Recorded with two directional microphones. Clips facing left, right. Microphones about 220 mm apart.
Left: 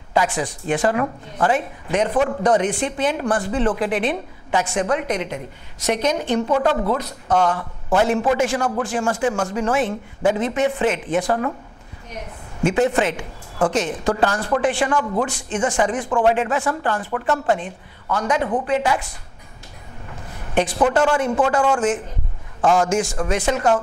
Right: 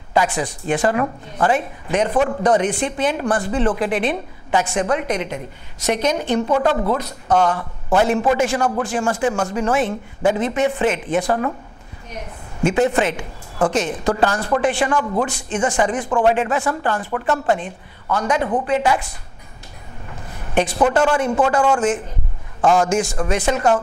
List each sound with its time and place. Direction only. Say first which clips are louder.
0.1 s a woman's voice: right 1 dB; 20° right (ahead or behind)
6.2 s a woman's voice: right 1 dB; 45° right (ahead or behind)
6.5 s a woman's voice: right 1 dB; 25° right (ahead or behind)
12.7 s a woman's voice: right 1 dB; 20° right (ahead or behind)
20.7 s a woman's voice: right 1 dB; 25° right (ahead or behind)